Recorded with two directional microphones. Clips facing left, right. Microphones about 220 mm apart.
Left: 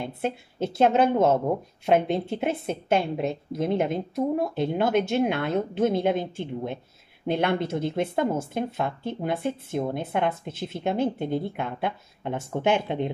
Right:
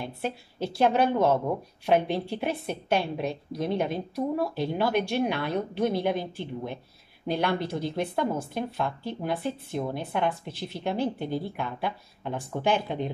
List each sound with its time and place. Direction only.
0.0 s a woman's voice: 20° left (ahead or behind)